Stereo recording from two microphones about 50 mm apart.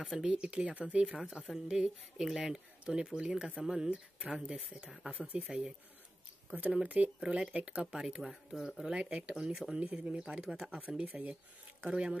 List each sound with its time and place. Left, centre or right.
0.1 s speech: centre
3.9 s speech: right
4.8 s speech: centre
6.5 s speech: right
7.2 s speech: centre
7.9 s speech: centre
9.0 s speech: right
9.3 s speech: centre